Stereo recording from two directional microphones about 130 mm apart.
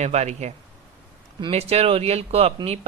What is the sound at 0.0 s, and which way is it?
Speech, 60° right (ahead or behind).